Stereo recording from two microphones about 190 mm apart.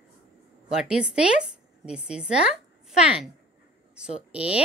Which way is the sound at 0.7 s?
5° right (ahead or behind).